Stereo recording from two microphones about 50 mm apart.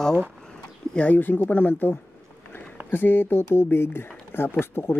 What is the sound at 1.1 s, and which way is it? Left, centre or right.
Speech, left.